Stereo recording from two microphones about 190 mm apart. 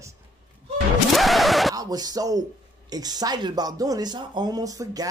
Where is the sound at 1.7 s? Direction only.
20° right (ahead or behind).